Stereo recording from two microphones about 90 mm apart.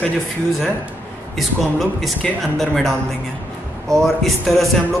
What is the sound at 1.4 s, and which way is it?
A man's voice, centre (ahead or behind).